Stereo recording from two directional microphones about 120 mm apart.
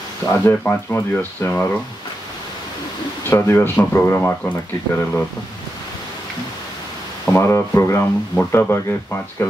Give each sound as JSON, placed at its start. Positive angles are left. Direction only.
{"t": 0.3, "sound": "speech", "side_deg": 15}
{"t": 3.3, "sound": "speech", "side_deg": 20}
{"t": 7.3, "sound": "speech", "side_deg": 25}